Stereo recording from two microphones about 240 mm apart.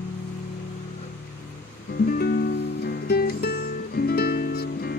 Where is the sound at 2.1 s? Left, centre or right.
Left.